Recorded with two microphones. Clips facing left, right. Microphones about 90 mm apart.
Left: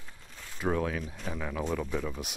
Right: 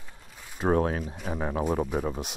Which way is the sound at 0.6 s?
40° right (ahead or behind).